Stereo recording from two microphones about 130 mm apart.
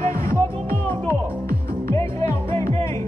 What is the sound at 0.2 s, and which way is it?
Music, 20° left (ahead or behind).